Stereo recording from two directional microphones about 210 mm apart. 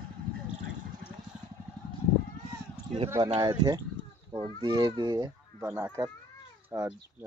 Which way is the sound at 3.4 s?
20° right (ahead or behind).